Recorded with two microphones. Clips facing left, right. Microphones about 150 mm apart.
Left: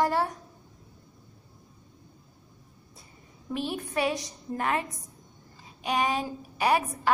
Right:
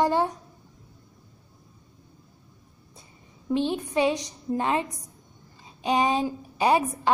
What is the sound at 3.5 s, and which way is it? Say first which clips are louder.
A woman's voice: right 6 dB; 25° right (ahead or behind).